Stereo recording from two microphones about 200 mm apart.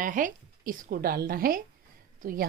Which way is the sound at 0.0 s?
40° right (ahead or behind).